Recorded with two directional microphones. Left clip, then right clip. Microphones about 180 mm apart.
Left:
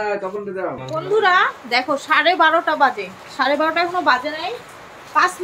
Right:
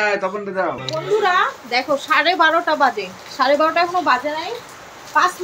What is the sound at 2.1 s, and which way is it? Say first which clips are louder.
A woman's voice: left 1 dB; 5° right (ahead or behind).